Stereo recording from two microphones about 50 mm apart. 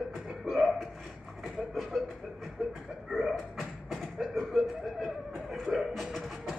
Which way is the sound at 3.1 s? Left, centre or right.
Centre.